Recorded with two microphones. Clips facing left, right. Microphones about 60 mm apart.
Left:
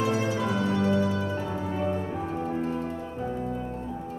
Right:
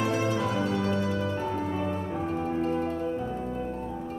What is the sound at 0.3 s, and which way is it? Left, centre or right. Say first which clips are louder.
Music: left 1 dB; right.